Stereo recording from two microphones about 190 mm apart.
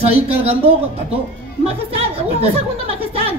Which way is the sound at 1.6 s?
30° right (ahead or behind).